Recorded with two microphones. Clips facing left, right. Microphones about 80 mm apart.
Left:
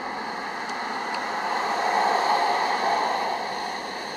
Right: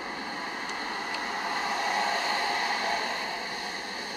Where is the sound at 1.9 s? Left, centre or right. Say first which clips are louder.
Left 10 dB; left.